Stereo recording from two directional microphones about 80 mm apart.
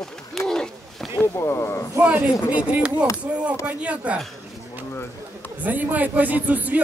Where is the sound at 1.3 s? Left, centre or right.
Left.